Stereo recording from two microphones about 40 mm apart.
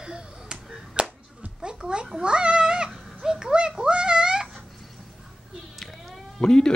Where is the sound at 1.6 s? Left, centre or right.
Right.